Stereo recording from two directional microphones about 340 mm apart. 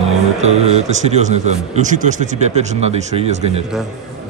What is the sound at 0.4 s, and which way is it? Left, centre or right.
A man's voice, centre.